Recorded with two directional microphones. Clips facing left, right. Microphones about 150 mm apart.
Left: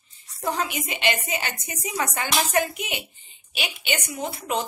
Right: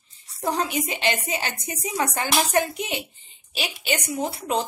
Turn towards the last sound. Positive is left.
turn(degrees=-30)  # may be behind; listen again after turning